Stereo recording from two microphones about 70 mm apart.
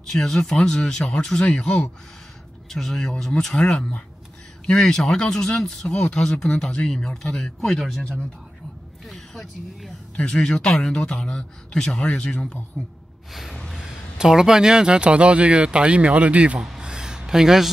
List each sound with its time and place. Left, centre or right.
0.0 s speech: centre
9.0 s speech: centre
12.7 s speech: centre
13.3 s gasp: centre
13.8 s a man's voice: centre
16.5 s speech: centre
16.8 s a sound: centre